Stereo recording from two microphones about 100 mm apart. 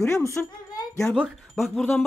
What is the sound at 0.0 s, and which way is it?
Speech, 30° left (ahead or behind).